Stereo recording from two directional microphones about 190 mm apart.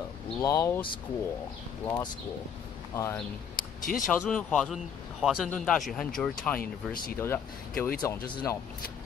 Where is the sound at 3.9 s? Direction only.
5° left (ahead or behind).